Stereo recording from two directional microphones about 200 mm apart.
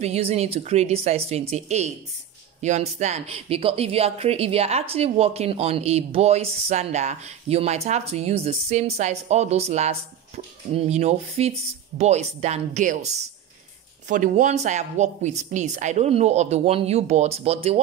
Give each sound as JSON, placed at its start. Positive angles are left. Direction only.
{"t": 0.0, "sound": "a woman's voice", "side_deg": -30}
{"t": 14.0, "sound": "a woman's voice", "side_deg": -40}